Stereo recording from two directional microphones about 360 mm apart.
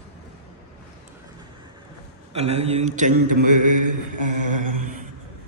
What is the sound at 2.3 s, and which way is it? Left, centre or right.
Speech, centre.